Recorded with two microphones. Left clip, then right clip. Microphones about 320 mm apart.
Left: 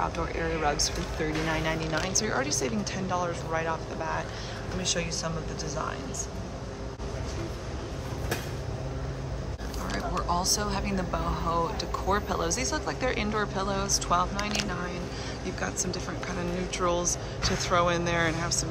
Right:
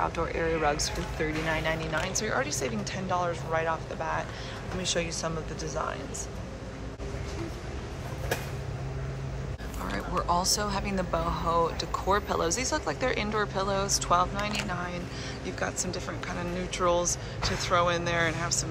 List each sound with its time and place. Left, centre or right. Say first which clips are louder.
0.0 s speech: right 1 dB; centre
9.8 s speech: right 1 dB; centre